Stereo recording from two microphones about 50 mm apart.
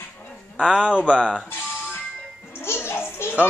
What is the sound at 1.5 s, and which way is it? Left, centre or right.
Music, left.